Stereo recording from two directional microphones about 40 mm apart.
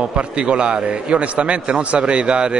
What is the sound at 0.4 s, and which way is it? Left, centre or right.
A man's voice, right.